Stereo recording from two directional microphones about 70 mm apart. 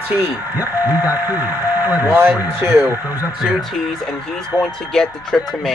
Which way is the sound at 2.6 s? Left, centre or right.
Right.